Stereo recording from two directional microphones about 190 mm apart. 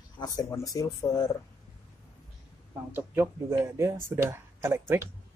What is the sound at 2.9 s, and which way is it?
Speech, 10° right (ahead or behind).